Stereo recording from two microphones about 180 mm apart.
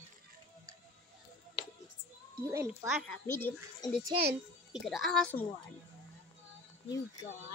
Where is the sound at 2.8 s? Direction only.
5° right (ahead or behind).